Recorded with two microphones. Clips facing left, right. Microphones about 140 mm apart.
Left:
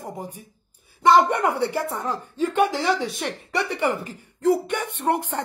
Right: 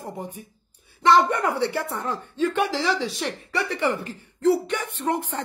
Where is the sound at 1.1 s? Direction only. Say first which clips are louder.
Left 1 dB; 65° left (ahead or behind).